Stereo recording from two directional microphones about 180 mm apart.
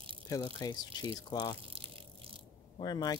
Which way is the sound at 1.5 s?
30° right (ahead or behind).